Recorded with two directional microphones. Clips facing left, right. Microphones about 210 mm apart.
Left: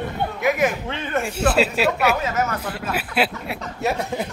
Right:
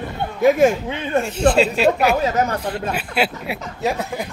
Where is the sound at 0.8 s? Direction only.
15° right (ahead or behind).